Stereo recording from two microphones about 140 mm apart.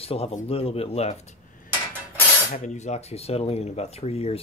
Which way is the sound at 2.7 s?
55° left (ahead or behind).